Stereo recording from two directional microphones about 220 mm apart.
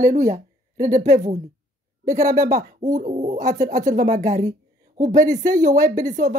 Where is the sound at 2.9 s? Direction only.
35° right (ahead or behind).